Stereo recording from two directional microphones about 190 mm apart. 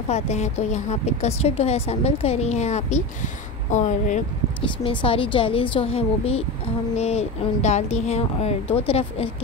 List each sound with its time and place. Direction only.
0.1 s a woman's voice: 35° left (ahead or behind)
4.8 s a woman's voice: 30° left (ahead or behind)